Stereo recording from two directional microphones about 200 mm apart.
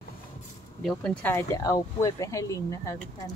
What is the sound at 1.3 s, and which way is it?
Speech, 15° left (ahead or behind).